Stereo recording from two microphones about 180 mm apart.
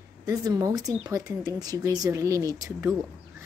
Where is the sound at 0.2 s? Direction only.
20° right (ahead or behind).